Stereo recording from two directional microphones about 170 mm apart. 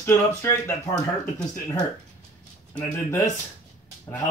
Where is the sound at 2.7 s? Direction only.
15° left (ahead or behind).